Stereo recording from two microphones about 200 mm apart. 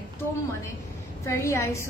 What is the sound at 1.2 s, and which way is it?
Speech, 15° left (ahead or behind).